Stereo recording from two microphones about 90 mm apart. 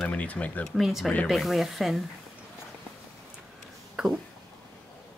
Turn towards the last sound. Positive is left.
turn(degrees=-5)  # may be behind; listen again after turning